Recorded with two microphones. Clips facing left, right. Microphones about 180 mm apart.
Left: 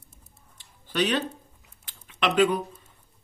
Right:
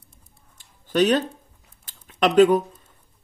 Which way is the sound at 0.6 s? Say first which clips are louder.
Right 7 dB; 45° right (ahead or behind).